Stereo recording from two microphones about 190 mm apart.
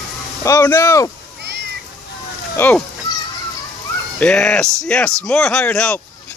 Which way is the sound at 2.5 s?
10° left (ahead or behind).